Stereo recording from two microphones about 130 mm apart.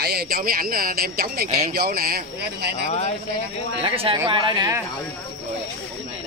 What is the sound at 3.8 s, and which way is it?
Speech, 45° right (ahead or behind).